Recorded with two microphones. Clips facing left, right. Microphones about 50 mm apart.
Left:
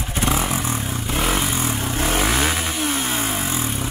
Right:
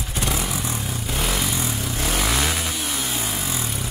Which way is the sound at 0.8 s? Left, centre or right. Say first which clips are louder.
Left 3 dB; left.